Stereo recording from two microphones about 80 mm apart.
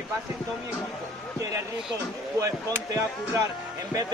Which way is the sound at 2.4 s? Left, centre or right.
Right.